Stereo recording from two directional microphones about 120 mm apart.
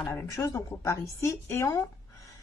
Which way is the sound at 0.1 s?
25° left (ahead or behind).